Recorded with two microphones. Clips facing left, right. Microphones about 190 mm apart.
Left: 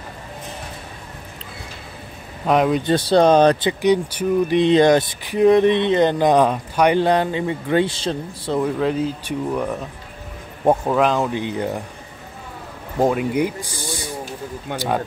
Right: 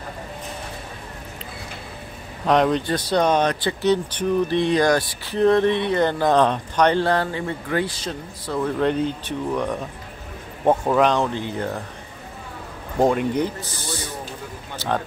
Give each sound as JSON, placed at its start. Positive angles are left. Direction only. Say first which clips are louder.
{"t": 2.4, "sound": "speech", "louder": "left 1 dB", "side_deg": 5}
{"t": 2.8, "sound": "speech", "louder": "left 5 dB", "side_deg": 30}
{"t": 3.6, "sound": "speech", "louder": "left 3 dB", "side_deg": 15}
{"t": 8.6, "sound": "speech", "louder": "right 3 dB", "side_deg": 5}
{"t": 13.0, "sound": "speech", "louder": "left 1 dB", "side_deg": 5}
{"t": 14.7, "sound": "speech", "louder": "left 11 dB", "side_deg": 55}